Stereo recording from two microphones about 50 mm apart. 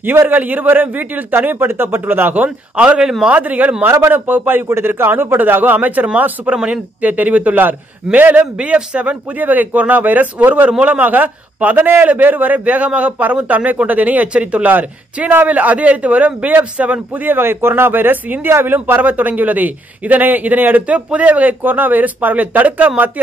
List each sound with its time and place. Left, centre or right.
0.0 s a man's voice: right
3.3 s a man's voice: right
4.6 s a man's voice: right
6.5 s a man's voice: centre
7.0 s a man's voice: right
9.4 s a man's voice: right
10.7 s a man's voice: right
11.0 s a man's voice: right
17.1 s speech: right
19.0 s a man's voice: right